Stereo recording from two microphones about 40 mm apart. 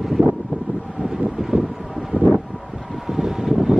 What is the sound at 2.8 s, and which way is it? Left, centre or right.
Vehicle, centre.